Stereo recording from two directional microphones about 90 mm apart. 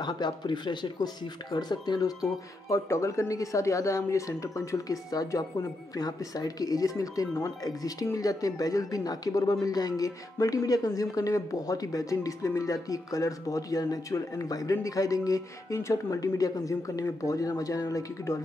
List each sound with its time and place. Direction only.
0.0 s speech: 55° left (ahead or behind)
2.7 s speech: 35° left (ahead or behind)